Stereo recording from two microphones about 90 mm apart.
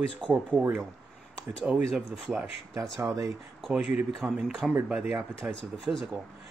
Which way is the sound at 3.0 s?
40° right (ahead or behind).